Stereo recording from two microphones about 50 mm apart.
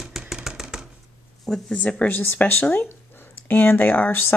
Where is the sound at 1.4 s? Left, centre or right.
Centre.